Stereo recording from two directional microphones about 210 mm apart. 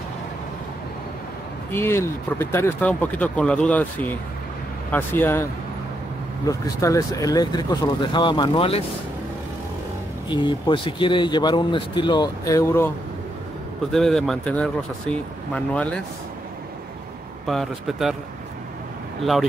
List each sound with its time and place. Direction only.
1.7 s speech: 10° left (ahead or behind); by 8.8 s 25° left (ahead or behind)
10.3 s speech: 20° left (ahead or behind)
13.9 s speech: centre (ahead or behind)
17.5 s speech: centre (ahead or behind)